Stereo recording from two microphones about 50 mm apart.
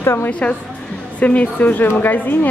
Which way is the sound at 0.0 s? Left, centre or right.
Left.